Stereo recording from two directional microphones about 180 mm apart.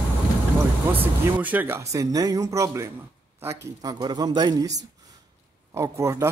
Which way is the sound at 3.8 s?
25° right (ahead or behind).